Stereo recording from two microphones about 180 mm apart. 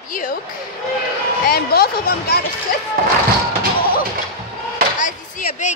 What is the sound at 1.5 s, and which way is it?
Speech, 60° left (ahead or behind).